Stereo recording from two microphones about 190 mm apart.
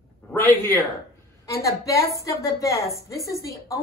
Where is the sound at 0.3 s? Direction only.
10° left (ahead or behind).